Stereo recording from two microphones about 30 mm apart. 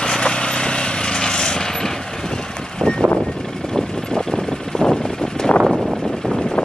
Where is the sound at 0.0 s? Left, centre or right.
Left.